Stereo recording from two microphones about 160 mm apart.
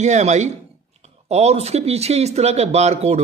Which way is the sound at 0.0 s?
45° right (ahead or behind).